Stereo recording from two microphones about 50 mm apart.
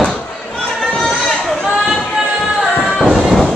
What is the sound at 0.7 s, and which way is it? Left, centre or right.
Chatter, centre.